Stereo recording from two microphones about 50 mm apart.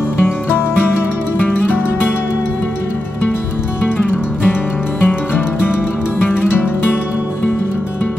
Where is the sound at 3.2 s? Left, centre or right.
Left.